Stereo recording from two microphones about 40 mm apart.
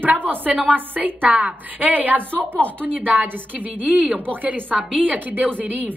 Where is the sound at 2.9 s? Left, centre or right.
Right.